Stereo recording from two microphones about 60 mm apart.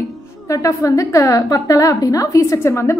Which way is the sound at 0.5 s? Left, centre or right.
Left.